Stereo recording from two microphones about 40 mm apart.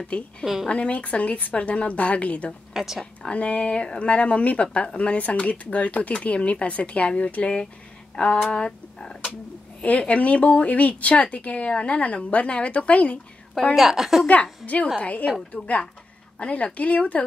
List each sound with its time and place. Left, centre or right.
0.1 s a woman's voice: left
2.7 s speech: centre
3.2 s speech: left
8.2 s speech: left
9.8 s speech: left
13.7 s a woman's voice: centre
14.2 s speech: left